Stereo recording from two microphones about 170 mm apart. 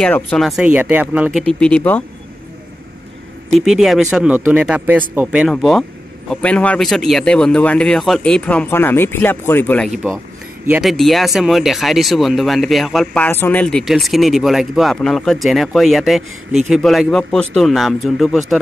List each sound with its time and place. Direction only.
0.0 s speech: 5° left (ahead or behind)
1.5 s a man's voice: 5° left (ahead or behind)
3.5 s a man's voice: centre (ahead or behind)
10.7 s speech: centre (ahead or behind)